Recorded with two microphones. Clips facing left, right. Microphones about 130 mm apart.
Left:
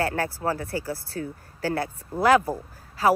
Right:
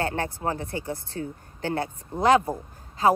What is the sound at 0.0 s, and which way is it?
A woman's voice, 25° right (ahead or behind).